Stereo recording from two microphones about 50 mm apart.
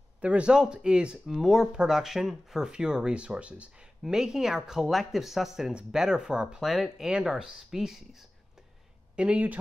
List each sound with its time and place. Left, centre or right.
0.2 s speech: right
1.2 s speech: centre
1.7 s speech: centre
6.6 s speech: centre
9.1 s speech: right